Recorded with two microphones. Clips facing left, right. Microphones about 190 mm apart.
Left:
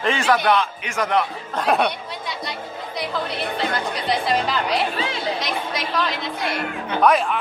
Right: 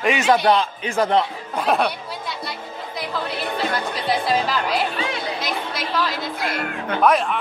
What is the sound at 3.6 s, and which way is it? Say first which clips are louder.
A woman's voice: right 1 dB; centre (ahead or behind).